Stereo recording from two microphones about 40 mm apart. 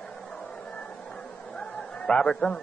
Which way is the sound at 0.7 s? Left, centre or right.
Left.